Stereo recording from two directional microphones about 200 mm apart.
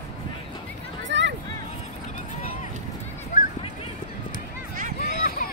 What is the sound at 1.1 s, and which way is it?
Hubbub, 60° right (ahead or behind).